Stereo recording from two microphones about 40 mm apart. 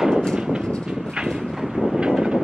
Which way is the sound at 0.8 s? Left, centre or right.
Right.